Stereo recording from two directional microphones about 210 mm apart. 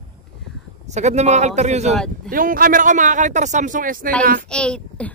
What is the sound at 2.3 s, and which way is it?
Speech, 40° right (ahead or behind).